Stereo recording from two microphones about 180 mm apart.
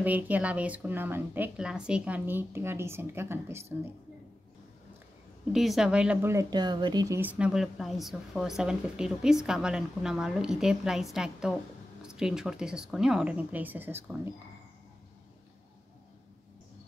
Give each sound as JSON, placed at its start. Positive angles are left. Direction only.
{"t": 0.0, "sound": "a woman's voice", "side_deg": -10}
{"t": 5.5, "sound": "a woman's voice", "side_deg": 0}
{"t": 7.2, "sound": "speech", "side_deg": -10}